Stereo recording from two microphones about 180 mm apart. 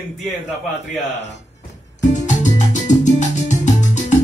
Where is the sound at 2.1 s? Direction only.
40° left (ahead or behind).